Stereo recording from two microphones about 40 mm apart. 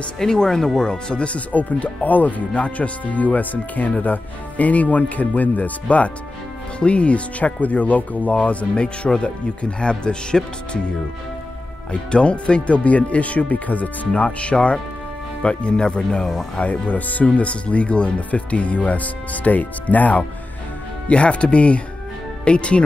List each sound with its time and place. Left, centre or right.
0.2 s speech: centre
1.5 s speech: left
11.9 s speech: left
16.5 s speech: left
21.1 s speech: left